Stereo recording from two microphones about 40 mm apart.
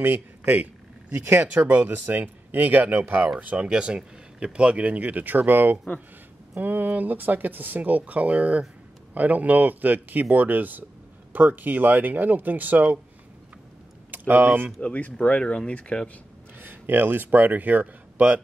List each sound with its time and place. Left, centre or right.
0.0 s speech: right
1.4 s speech: right
3.3 s speech: right
14.1 s speech: right
14.8 s speech: left
16.5 s speech: right